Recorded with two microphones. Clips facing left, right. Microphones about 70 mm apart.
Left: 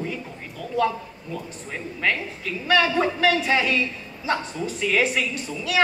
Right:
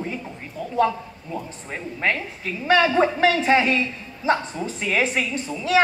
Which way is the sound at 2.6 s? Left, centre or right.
Right.